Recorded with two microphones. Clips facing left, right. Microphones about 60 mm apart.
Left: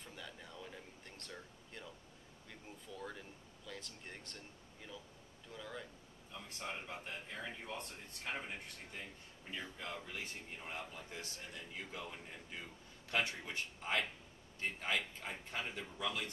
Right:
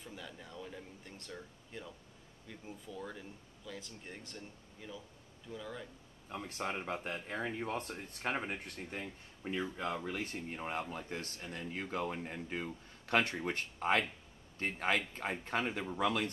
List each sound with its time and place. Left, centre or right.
0.0 s speech: centre
6.3 s speech: right